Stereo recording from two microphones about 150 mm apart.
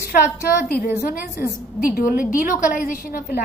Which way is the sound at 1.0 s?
75° left (ahead or behind).